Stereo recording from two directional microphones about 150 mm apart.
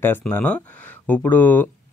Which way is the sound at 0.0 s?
15° left (ahead or behind).